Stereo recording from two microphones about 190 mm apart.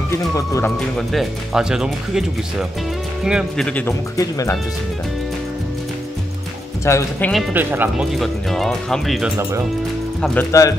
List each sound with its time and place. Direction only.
0.1 s speech: 15° left (ahead or behind)
0.7 s speech: 5° left (ahead or behind)
3.3 s speech: centre (ahead or behind); by 4.6 s 15° left (ahead or behind)
6.8 s speech: 15° left (ahead or behind)
7.5 s speech: 10° right (ahead or behind)
10.5 s speech: 15° left (ahead or behind)